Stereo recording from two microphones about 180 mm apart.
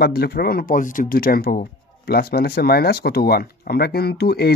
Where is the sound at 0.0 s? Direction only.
60° left (ahead or behind).